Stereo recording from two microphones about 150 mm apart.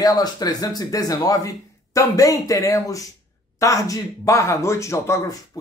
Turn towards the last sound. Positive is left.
turn(degrees=20)  # may be behind; listen again after turning